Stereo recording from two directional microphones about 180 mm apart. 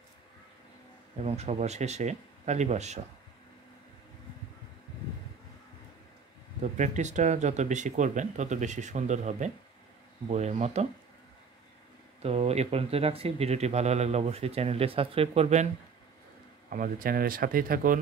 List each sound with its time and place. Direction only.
1.1 s speech: 35° right (ahead or behind)
6.6 s speech: 40° right (ahead or behind)
12.2 s speech: 35° right (ahead or behind)
16.7 s speech: 50° right (ahead or behind)